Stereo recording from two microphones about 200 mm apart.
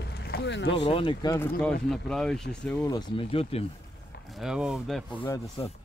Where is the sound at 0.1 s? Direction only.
55° left (ahead or behind).